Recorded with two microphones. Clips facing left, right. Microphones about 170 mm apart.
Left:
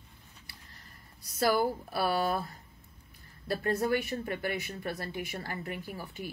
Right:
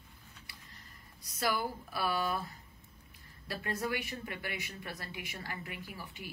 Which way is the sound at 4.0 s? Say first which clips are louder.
Left 7 dB; 45° left (ahead or behind).